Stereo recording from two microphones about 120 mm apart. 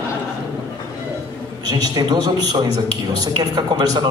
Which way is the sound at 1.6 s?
35° right (ahead or behind).